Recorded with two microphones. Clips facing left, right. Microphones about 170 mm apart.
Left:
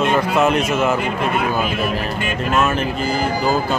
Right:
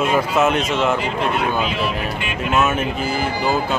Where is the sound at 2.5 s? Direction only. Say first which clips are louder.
Even; 5° right (ahead or behind).